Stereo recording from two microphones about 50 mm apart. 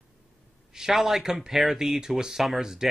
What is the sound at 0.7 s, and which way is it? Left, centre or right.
Speech, centre.